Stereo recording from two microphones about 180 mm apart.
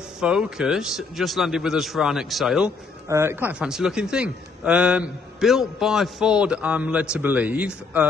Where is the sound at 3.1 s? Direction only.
15° right (ahead or behind).